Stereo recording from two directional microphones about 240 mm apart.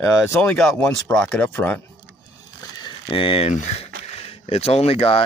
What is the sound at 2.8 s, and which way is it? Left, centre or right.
Speech, left.